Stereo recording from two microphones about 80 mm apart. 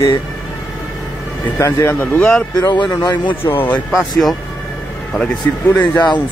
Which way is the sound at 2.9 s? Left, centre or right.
Left.